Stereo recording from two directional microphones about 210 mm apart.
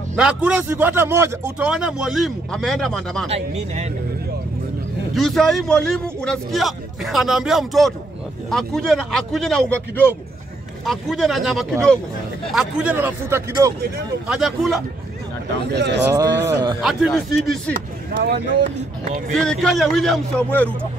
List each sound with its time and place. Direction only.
0.1 s a man's voice: 5° right (ahead or behind)
3.3 s speech: 30° right (ahead or behind)
5.1 s a man's voice: centre (ahead or behind)
14.2 s a man's voice: centre (ahead or behind)
15.7 s speech: 55° right (ahead or behind)
16.1 s speech: 10° right (ahead or behind)
16.8 s a man's voice: centre (ahead or behind)
18.2 s speech: 50° right (ahead or behind)
19.3 s a man's voice: 5° left (ahead or behind)